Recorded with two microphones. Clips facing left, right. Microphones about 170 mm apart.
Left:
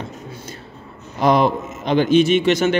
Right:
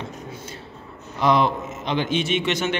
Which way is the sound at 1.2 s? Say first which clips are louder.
Left 4 dB; 45° left (ahead or behind).